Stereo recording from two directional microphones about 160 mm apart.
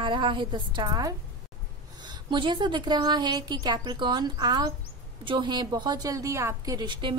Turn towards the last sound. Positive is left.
turn(degrees=-30)  # may be behind; listen again after turning